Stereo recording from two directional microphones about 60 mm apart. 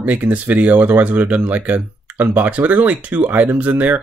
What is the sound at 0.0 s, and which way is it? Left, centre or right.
Speech, right.